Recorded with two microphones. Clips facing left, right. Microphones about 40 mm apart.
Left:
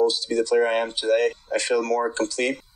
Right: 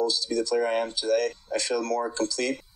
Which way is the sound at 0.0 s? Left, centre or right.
Left.